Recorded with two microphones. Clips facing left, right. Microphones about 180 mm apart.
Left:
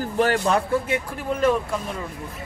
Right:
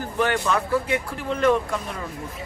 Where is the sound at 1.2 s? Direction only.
10° left (ahead or behind).